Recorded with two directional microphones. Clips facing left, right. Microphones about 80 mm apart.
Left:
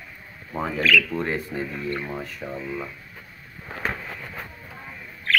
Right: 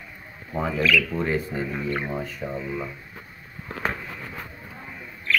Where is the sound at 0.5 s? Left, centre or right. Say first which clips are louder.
Even; centre.